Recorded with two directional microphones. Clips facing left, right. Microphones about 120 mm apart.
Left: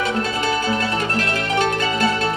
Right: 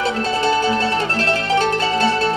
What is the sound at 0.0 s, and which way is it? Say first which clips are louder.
Music: right 3 dB; 30° right (ahead or behind).